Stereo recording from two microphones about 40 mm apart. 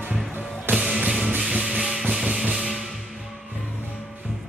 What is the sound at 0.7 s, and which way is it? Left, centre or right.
Music, centre.